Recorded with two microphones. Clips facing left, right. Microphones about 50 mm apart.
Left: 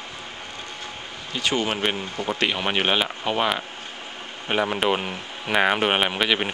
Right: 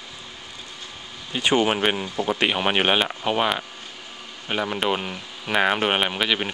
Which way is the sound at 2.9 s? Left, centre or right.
Centre.